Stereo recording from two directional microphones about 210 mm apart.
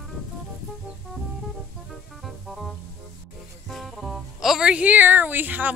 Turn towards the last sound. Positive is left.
turn(degrees=-10)  # may be behind; listen again after turning